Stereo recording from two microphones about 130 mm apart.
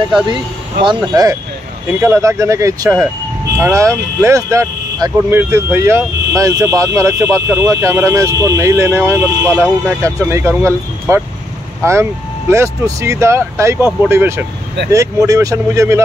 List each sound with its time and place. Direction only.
0.8 s speech: 25° right (ahead or behind)